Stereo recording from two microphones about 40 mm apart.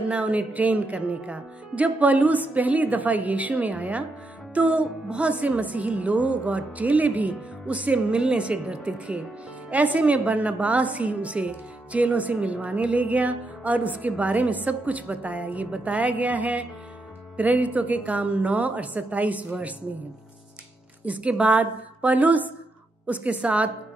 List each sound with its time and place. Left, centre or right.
0.1 s speech: right
21.0 s speech: right